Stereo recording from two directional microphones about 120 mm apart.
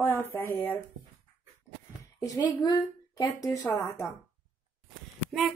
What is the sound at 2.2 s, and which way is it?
A woman's voice, 35° left (ahead or behind).